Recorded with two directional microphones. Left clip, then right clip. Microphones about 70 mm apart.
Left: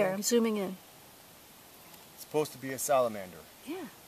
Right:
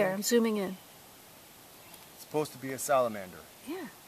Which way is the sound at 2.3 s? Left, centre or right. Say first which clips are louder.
Left 1 dB; left.